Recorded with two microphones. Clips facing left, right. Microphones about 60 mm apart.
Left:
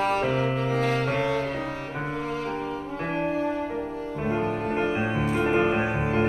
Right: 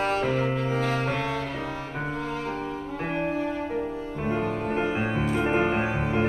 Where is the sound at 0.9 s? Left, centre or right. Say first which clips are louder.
Left 2 dB; left.